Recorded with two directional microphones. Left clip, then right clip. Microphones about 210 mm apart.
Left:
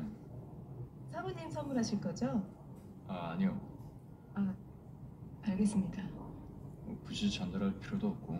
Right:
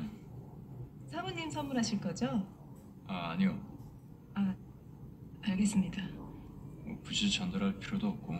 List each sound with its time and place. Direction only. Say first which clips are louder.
1.1 s a woman's voice: right 3 dB; 30° right (ahead or behind)
5.4 s a woman's voice: right 2 dB; 30° right (ahead or behind)
7.1 s a man's voice: right 6 dB; 30° right (ahead or behind)